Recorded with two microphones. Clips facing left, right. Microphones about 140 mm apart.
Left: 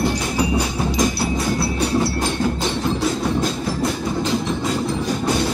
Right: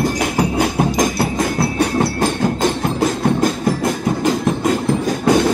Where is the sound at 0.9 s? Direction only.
50° right (ahead or behind).